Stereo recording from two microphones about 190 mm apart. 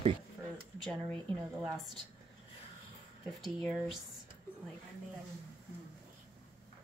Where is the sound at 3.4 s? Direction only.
Centre (ahead or behind).